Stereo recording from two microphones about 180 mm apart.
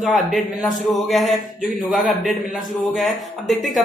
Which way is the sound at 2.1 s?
Centre (ahead or behind).